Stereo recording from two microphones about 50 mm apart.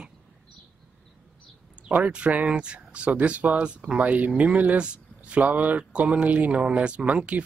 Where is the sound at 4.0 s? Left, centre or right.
Right.